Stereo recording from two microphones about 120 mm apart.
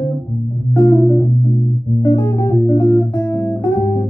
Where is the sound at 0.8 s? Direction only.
30° left (ahead or behind).